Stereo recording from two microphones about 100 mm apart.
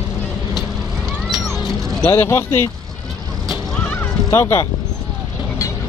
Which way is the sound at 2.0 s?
25° left (ahead or behind).